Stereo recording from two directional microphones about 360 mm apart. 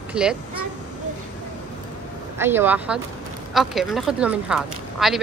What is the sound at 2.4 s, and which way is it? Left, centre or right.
Speech, centre.